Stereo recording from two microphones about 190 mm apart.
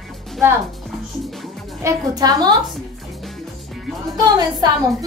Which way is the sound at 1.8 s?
20° right (ahead or behind).